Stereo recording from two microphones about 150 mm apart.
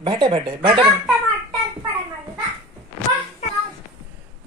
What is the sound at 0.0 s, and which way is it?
Speech, 35° right (ahead or behind).